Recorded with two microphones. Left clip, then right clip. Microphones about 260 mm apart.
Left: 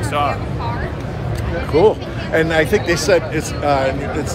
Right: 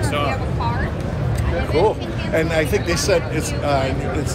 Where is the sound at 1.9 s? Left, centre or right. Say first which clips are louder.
Left 4 dB; left.